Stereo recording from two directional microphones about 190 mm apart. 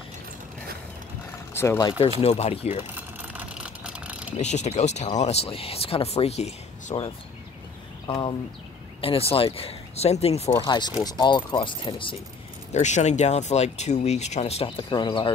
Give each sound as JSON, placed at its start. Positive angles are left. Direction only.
{"t": 1.5, "sound": "speech", "side_deg": 15}
{"t": 2.1, "sound": "speech", "side_deg": 35}
{"t": 2.9, "sound": "vehicle", "side_deg": -10}
{"t": 4.4, "sound": "speech", "side_deg": 35}
{"t": 8.1, "sound": "speech", "side_deg": 25}
{"t": 10.5, "sound": "speech", "side_deg": 20}
{"t": 12.7, "sound": "speech", "side_deg": 35}